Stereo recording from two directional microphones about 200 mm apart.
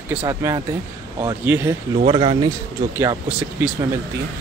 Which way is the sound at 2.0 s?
30° right (ahead or behind).